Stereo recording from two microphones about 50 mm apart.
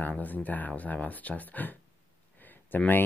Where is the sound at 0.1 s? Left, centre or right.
Left.